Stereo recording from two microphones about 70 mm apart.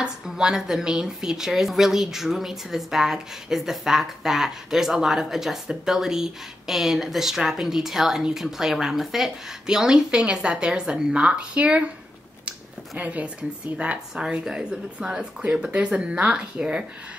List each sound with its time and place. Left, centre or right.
0.0 s speech: centre